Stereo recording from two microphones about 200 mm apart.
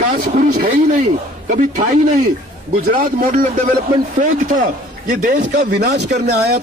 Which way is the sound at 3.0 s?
45° right (ahead or behind).